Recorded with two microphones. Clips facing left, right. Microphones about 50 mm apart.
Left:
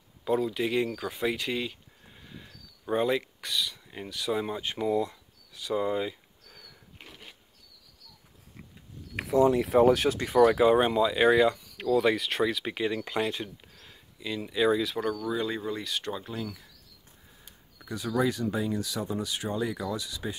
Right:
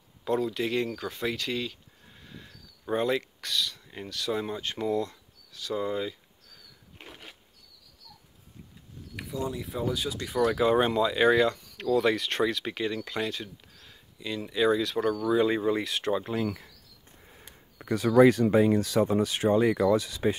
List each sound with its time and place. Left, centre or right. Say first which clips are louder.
0.2 s speech: left 1 dB; centre
2.1 s a sound: even; centre
3.3 s speech: right 1 dB; centre
9.2 s speech: left 11 dB; left
9.8 s speech: left 8 dB; left
10.1 s speech: left 5 dB; left
10.7 s speech: left 1 dB; centre
13.7 s speech: even; centre
15.1 s speech: right 6 dB; centre
16.4 s speech: right 7 dB; right
17.3 s speech: right 4 dB; right